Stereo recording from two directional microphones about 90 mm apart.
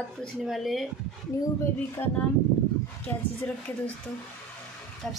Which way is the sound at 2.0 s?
25° left (ahead or behind).